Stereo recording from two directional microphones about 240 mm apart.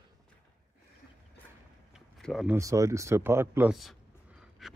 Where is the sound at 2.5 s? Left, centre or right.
Centre.